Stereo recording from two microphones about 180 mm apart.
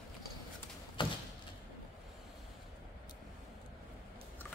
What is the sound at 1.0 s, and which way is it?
Thump, 25° left (ahead or behind).